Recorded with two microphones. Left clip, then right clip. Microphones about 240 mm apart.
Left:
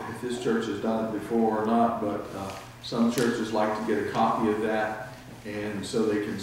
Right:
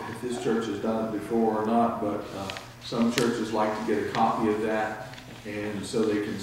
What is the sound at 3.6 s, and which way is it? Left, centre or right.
Speech, centre.